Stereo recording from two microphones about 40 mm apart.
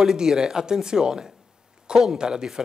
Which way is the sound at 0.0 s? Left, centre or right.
Centre.